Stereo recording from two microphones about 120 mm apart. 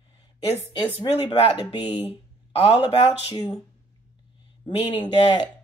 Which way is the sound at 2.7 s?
35° left (ahead or behind).